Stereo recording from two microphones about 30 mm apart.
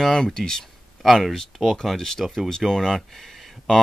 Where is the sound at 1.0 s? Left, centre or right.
Centre.